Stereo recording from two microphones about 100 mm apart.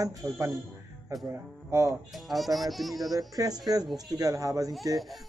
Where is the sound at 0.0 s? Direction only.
35° right (ahead or behind).